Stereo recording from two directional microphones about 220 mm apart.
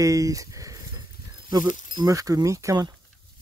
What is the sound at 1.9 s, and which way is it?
Speech, 15° right (ahead or behind).